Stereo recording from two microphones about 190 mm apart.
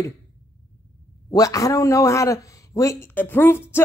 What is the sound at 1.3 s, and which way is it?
A man's voice, 20° left (ahead or behind).